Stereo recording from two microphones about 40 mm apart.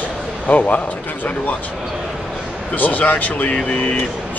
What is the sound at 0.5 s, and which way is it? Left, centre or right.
Speech, left.